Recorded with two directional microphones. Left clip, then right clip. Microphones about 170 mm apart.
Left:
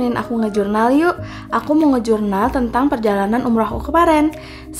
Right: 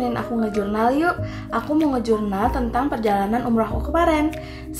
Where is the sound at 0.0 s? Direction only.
45° left (ahead or behind).